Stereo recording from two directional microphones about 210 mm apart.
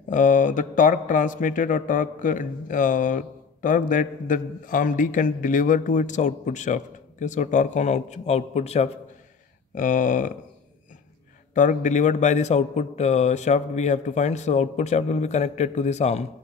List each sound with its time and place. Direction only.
0.1 s speech: 40° left (ahead or behind)
11.5 s speech: 35° left (ahead or behind)